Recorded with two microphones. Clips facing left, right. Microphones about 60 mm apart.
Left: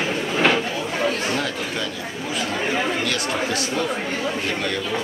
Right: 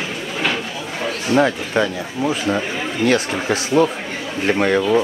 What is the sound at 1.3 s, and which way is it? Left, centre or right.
Speech, right.